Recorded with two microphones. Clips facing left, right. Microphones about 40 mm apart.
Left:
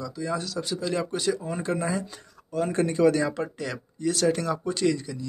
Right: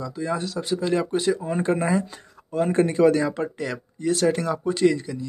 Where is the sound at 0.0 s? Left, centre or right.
Right.